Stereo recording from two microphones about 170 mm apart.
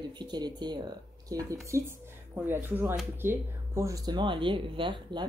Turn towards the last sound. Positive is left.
turn(degrees=-30)  # may be behind; listen again after turning